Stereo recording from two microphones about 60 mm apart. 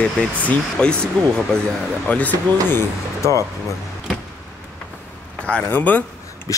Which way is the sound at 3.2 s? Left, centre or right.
Left.